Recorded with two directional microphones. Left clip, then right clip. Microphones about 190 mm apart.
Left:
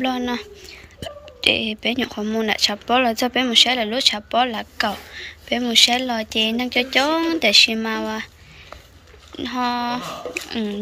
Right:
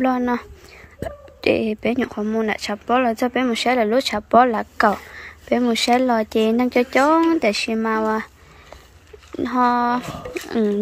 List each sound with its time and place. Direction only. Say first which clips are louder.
0.0 s speech: right 3 dB; 25° right (ahead or behind)
9.4 s speech: right 5 dB; 30° right (ahead or behind)